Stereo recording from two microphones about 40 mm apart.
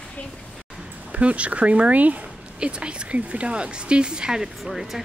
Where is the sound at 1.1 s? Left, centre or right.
Right.